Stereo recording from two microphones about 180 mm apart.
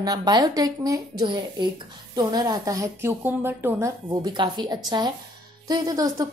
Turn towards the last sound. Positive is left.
turn(degrees=-20)  # may be behind; listen again after turning